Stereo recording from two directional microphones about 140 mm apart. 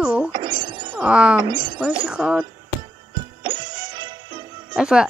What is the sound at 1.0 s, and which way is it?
Speech, 10° right (ahead or behind).